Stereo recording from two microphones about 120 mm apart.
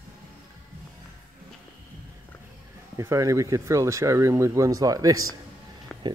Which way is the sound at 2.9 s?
25° right (ahead or behind).